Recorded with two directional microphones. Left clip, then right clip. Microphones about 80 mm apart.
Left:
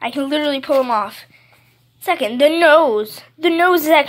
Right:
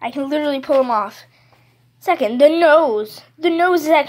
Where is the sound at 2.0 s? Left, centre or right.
Right.